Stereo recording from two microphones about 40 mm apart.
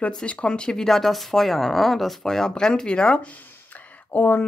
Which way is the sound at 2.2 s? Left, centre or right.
Centre.